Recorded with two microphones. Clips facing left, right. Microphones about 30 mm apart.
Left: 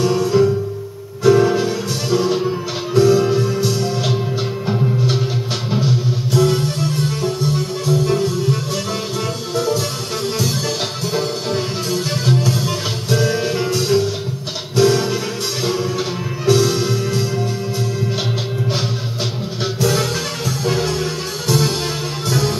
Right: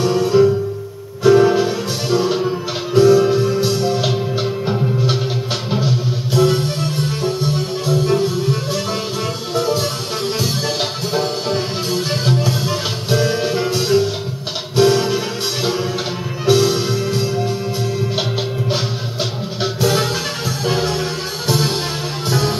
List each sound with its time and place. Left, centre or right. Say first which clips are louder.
0.2 s music: right 2 dB; centre
19.8 s music: right 1 dB; centre